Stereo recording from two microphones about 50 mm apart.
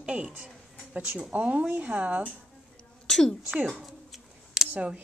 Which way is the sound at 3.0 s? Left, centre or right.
Centre.